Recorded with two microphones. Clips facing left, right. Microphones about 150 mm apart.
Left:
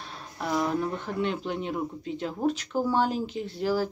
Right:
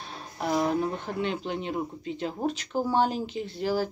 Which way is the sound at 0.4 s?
30° right (ahead or behind).